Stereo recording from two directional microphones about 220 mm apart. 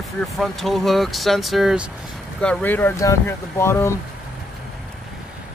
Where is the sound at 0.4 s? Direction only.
Centre (ahead or behind).